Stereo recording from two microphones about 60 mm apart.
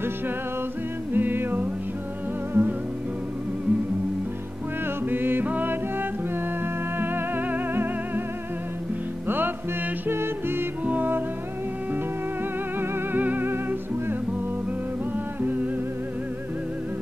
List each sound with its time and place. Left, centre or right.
1.1 s music: right
5.1 s music: right
10.0 s music: right
13.1 s music: right
15.4 s music: right